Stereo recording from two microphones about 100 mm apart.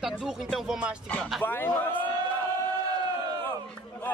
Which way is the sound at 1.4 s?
20° left (ahead or behind).